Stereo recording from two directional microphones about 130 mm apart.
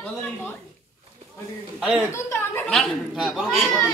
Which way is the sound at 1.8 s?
5° right (ahead or behind).